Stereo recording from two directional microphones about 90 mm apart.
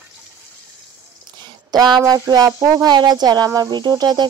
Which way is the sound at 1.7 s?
50° right (ahead or behind).